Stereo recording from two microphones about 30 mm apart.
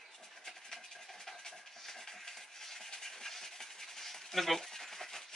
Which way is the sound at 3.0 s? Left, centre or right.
Centre.